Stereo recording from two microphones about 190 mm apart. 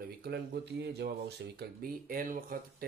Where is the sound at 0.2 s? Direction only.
55° right (ahead or behind).